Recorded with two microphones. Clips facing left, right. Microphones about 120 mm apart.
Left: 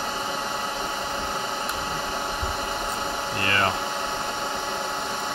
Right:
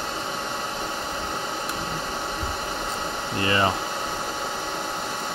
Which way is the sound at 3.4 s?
20° right (ahead or behind).